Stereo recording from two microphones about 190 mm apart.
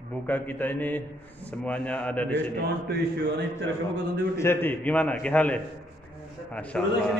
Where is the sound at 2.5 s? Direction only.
55° right (ahead or behind).